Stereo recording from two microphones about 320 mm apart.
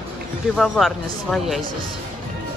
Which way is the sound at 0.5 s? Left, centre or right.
Centre.